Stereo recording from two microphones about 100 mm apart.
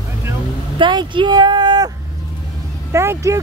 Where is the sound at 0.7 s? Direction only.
50° right (ahead or behind).